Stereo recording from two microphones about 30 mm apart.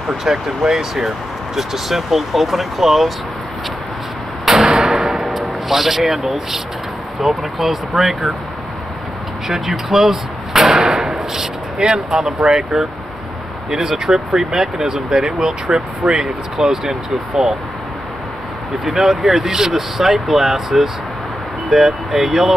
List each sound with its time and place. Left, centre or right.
0.2 s speech: centre
4.5 s door: centre
4.8 s a sound: centre
7.2 s speech: centre
9.5 s speech: centre
10.9 s a sound: centre
12.3 s speech: centre
15.4 s speech: centre
19.0 s speech: centre
21.7 s speech: right
22.1 s speech: centre